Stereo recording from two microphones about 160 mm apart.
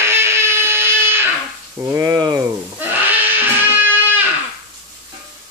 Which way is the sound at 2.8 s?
10° right (ahead or behind).